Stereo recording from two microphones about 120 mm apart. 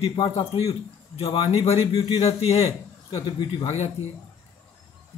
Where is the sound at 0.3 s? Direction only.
55° left (ahead or behind).